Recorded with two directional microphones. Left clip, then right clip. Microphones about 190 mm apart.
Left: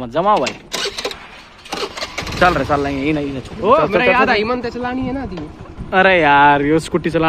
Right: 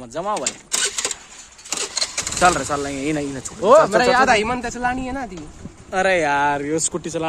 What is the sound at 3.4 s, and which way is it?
Speech, 90° right.